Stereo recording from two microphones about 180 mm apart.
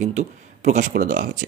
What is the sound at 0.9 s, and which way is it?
Speech, 55° right (ahead or behind).